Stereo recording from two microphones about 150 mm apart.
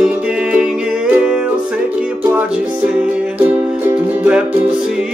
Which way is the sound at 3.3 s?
10° right (ahead or behind).